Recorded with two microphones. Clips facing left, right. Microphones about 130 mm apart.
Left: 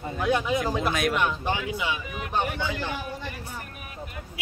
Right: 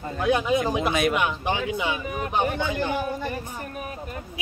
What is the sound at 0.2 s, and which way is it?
Speech, 15° right (ahead or behind).